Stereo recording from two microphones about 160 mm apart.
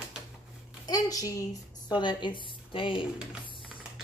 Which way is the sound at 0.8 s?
25° left (ahead or behind).